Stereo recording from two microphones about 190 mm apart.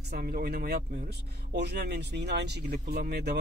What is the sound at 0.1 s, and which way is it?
Speech, 55° right (ahead or behind).